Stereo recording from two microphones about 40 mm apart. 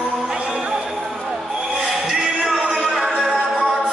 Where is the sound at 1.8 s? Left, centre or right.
Centre.